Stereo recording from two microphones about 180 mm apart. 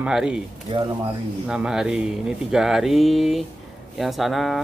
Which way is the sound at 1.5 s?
5° right (ahead or behind).